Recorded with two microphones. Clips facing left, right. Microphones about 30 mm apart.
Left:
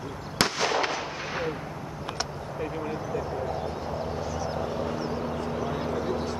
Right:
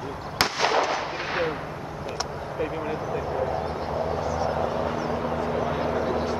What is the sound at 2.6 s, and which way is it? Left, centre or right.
Speech, right.